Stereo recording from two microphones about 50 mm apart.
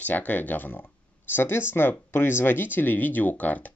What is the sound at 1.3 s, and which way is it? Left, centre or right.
Speech, left.